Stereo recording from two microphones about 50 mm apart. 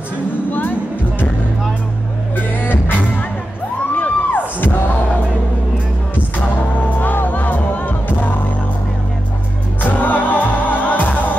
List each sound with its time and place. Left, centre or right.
0.5 s music: left
2.3 s music: left
3.9 s a sound: left
7.0 s music: left
9.8 s music: left